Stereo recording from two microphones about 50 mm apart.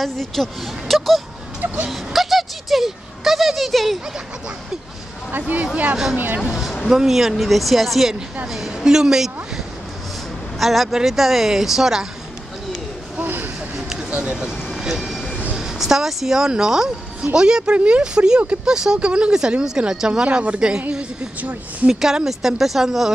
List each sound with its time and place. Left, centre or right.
0.0 s speech: centre
1.9 s a sound: centre
5.3 s speech: right
6.4 s speech: centre
10.6 s speech: centre
13.2 s vehicle: right
13.7 s a sound: centre
14.1 s vehicle: centre
15.5 s speech: centre
20.1 s speech: right
22.0 s speech: centre